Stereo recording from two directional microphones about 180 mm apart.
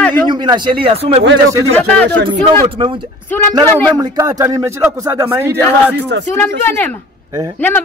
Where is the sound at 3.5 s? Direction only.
20° right (ahead or behind).